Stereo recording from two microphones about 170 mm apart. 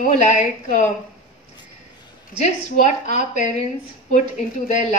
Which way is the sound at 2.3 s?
45° left (ahead or behind).